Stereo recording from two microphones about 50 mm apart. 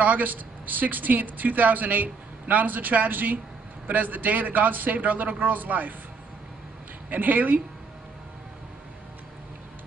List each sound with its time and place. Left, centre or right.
0.0 s speech: right
7.1 s speech: right